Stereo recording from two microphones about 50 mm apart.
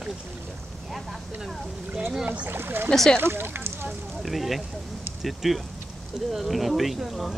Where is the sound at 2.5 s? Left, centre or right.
Right.